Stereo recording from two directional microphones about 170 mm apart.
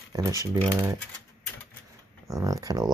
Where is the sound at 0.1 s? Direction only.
20° right (ahead or behind).